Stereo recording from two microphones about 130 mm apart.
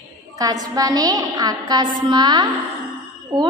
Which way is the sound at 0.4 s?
30° right (ahead or behind).